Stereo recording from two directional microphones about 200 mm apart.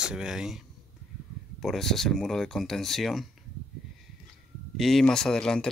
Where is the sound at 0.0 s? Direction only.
5° right (ahead or behind).